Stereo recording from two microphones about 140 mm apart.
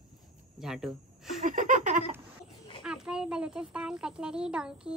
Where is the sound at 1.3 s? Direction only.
65° right (ahead or behind).